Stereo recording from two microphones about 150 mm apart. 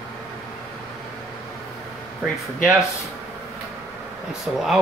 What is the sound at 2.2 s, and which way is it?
Speech, 10° right (ahead or behind).